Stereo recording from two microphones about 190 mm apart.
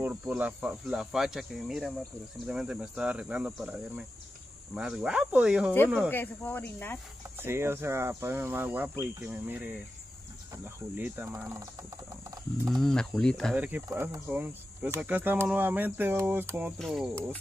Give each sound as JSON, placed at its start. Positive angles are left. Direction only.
{"t": 0.0, "sound": "cricket", "side_deg": -10}
{"t": 6.0, "sound": "speech", "side_deg": 10}
{"t": 7.3, "sound": "speech", "side_deg": -15}
{"t": 12.6, "sound": "cricket", "side_deg": 0}
{"t": 13.6, "sound": "speech", "side_deg": -10}